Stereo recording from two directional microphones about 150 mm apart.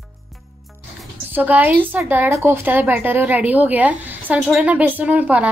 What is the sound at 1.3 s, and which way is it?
A woman's voice, 10° right (ahead or behind).